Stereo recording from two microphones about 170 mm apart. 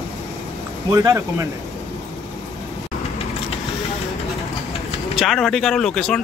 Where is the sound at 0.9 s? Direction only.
20° right (ahead or behind).